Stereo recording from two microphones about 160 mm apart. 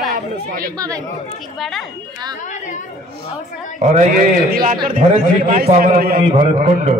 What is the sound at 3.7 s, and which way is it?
A man's voice, 50° right (ahead or behind).